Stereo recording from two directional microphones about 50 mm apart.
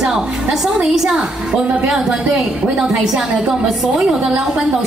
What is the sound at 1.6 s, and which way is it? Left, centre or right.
A woman's voice, right.